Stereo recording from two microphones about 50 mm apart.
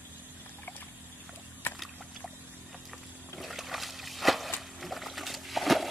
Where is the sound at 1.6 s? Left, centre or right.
Left.